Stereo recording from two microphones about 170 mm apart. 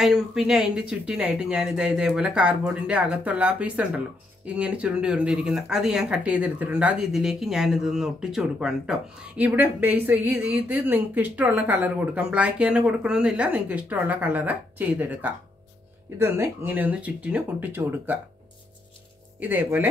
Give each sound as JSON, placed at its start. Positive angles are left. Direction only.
{"t": 0.0, "sound": "speech", "side_deg": -5}
{"t": 19.4, "sound": "speech", "side_deg": -10}